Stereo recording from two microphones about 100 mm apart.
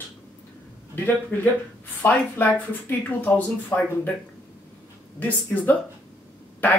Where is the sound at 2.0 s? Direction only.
20° left (ahead or behind).